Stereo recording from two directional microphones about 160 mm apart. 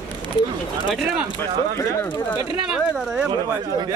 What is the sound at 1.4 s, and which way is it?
Speech, 15° left (ahead or behind).